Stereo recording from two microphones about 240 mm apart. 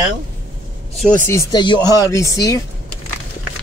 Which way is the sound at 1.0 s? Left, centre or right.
Centre.